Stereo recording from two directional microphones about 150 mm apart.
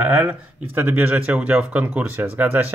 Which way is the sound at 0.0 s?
10° right (ahead or behind).